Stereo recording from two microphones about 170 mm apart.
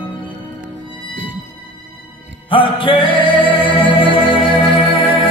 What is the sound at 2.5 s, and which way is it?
Music, 30° left (ahead or behind).